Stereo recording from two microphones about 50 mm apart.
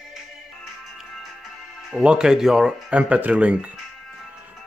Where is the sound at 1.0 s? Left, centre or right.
Centre.